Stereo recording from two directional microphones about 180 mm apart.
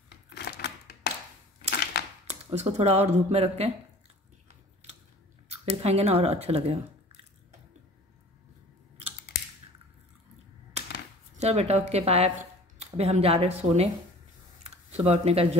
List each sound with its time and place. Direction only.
0.3 s typewriter: 70° left (ahead or behind)
2.2 s speech: 35° right (ahead or behind)
5.5 s speech: 35° right (ahead or behind)
11.3 s speech: 35° right (ahead or behind)
14.6 s a sound: 35° right (ahead or behind)